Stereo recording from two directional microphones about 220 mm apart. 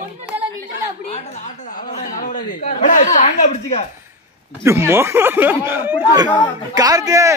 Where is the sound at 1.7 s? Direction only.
35° left (ahead or behind).